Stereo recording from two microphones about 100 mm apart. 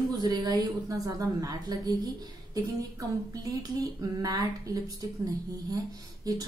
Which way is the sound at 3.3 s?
40° right (ahead or behind).